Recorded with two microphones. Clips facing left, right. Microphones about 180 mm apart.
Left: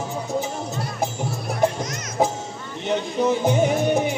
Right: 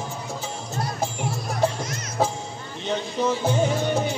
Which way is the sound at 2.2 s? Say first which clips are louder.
Left 3 dB; 15° left (ahead or behind).